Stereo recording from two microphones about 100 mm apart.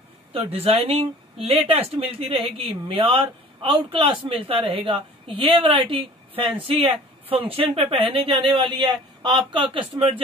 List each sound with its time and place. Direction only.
0.3 s speech: 70° right (ahead or behind)